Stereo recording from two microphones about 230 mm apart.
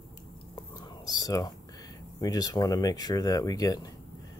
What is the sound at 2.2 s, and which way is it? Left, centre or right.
Speech, centre.